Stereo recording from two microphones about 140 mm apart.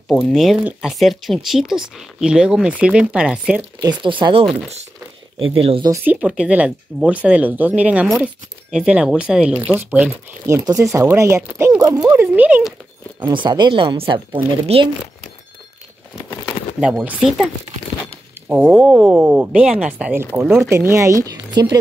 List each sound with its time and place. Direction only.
0.1 s speech: centre (ahead or behind)
4.0 s speech: 35° right (ahead or behind)
5.5 s speech: 40° right (ahead or behind)
6.0 s speech: 5° right (ahead or behind)
10.4 s speech: 20° right (ahead or behind)
13.3 s speech: 35° right (ahead or behind)
16.8 s speech: 10° right (ahead or behind)
18.5 s speech: 10° right (ahead or behind); by 21.7 s 25° right (ahead or behind)